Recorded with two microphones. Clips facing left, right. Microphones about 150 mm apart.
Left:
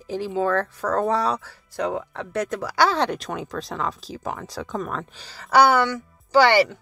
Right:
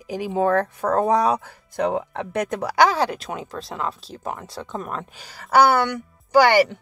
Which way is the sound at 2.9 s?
5° right (ahead or behind).